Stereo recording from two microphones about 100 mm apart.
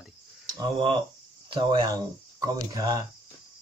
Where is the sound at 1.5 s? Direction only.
55° right (ahead or behind).